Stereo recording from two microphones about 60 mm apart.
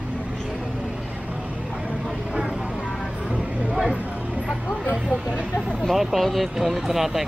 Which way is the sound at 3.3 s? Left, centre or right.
Right.